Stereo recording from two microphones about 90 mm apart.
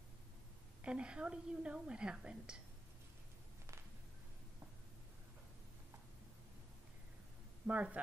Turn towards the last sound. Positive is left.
turn(degrees=-15)  # may be behind; listen again after turning